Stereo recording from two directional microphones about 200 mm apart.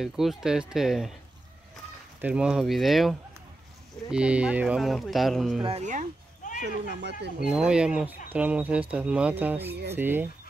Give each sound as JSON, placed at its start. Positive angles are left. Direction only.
{"t": 0.0, "sound": "speech", "side_deg": 0}
{"t": 2.2, "sound": "speech", "side_deg": -5}
{"t": 5.6, "sound": "speech", "side_deg": -30}
{"t": 6.6, "sound": "speech", "side_deg": -60}
{"t": 7.4, "sound": "speech", "side_deg": -5}